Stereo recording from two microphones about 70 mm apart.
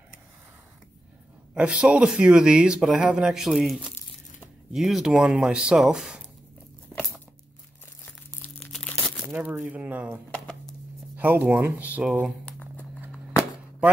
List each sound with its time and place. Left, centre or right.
1.5 s speech: centre
5.1 s speech: centre
9.2 s speech: right
10.3 s a sound: centre
11.1 s speech: right
12.4 s a sound: left